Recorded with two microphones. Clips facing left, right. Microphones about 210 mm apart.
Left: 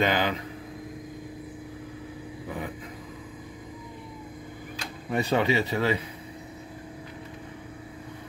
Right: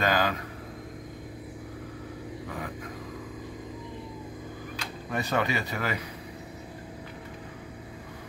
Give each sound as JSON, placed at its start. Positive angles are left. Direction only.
{"t": 0.0, "sound": "speech", "side_deg": 20}
{"t": 5.1, "sound": "speech", "side_deg": 25}